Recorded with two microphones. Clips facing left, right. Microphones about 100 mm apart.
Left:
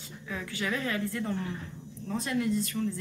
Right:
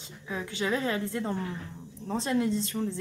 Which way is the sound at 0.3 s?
25° right (ahead or behind).